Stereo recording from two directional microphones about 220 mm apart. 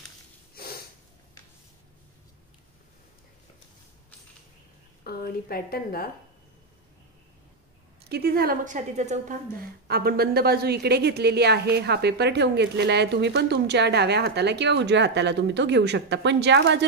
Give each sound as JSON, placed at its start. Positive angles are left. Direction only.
{"t": 5.0, "sound": "a woman's voice", "side_deg": 45}
{"t": 8.1, "sound": "a woman's voice", "side_deg": -45}